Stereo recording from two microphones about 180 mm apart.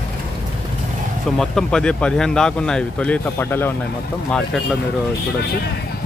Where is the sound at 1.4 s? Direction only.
5° left (ahead or behind).